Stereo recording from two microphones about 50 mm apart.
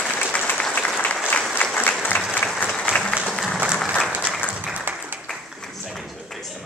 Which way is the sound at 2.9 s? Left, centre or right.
Left.